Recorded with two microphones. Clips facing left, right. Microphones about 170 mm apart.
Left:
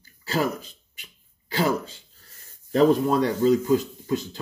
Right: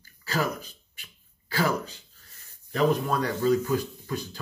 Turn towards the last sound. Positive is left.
turn(degrees=25)  # may be behind; listen again after turning